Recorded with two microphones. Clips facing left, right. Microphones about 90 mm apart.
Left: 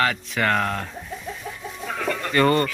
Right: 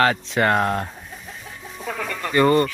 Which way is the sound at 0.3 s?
25° right (ahead or behind).